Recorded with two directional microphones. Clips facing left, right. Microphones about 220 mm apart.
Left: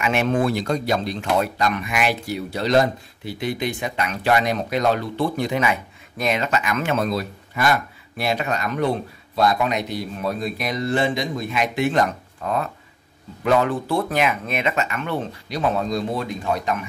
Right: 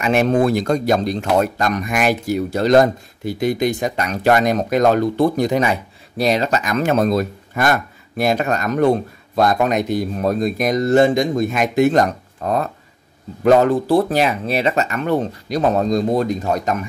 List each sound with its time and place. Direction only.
0.0 s speech: 40° right (ahead or behind)